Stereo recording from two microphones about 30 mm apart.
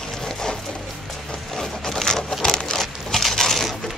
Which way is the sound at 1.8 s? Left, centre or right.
Centre.